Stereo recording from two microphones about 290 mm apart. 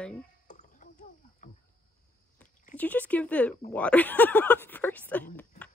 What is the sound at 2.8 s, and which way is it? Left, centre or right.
Speech, centre.